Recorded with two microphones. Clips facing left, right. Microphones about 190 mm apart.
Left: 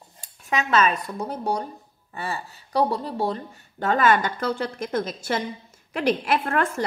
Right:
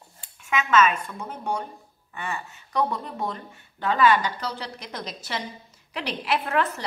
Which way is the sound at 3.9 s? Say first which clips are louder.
Even; 50° left (ahead or behind).